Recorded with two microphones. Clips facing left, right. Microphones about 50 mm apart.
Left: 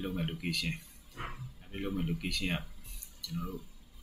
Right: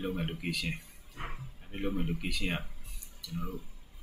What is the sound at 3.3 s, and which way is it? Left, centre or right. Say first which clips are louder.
Speech: even; right.